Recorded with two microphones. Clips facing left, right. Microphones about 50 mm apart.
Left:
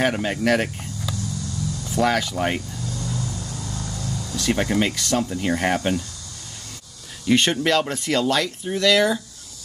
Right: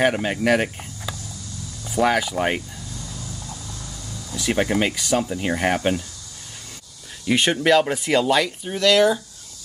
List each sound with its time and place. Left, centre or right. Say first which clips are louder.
0.0 s speech: right 1 dB; centre
1.9 s speech: right 2 dB; centre
4.4 s speech: right 1 dB; centre
7.2 s speech: right 1 dB; centre